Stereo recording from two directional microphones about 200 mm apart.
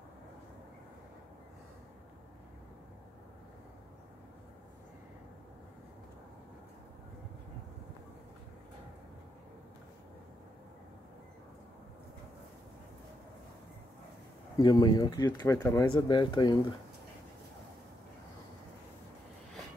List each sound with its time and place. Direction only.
14.6 s speech: 20° left (ahead or behind)